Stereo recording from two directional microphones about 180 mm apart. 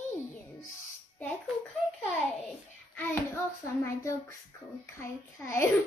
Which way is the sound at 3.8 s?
15° left (ahead or behind).